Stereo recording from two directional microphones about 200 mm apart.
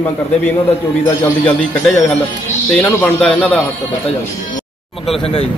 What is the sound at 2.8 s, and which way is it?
Speech, 5° left (ahead or behind).